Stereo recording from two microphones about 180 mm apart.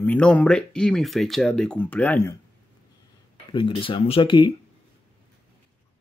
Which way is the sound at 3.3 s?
30° left (ahead or behind).